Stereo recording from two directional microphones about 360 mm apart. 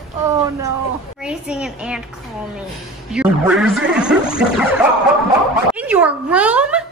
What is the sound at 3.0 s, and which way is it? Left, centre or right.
A man's voice, centre.